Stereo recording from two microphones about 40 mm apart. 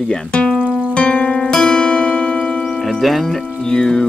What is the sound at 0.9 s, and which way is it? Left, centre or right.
Music, left.